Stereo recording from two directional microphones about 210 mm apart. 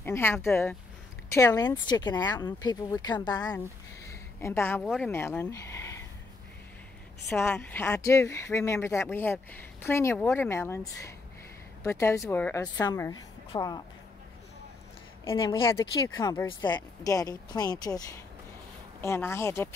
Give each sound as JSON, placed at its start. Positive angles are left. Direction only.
{"t": 0.0, "sound": "a woman's voice", "side_deg": 10}
{"t": 4.1, "sound": "a sound", "side_deg": 15}
{"t": 4.8, "sound": "a woman's voice", "side_deg": 0}
{"t": 7.2, "sound": "a woman's voice", "side_deg": 5}
{"t": 15.2, "sound": "a woman's voice", "side_deg": 25}